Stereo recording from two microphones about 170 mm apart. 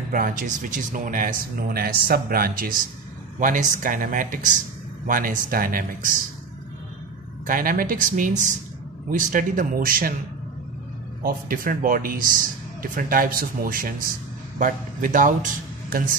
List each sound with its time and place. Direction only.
0.1 s a man's voice: 55° right (ahead or behind)
7.4 s a man's voice: 55° right (ahead or behind)
11.2 s a man's voice: 55° right (ahead or behind)